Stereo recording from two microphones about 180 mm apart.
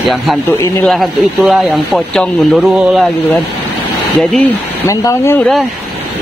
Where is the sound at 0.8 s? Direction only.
Centre (ahead or behind).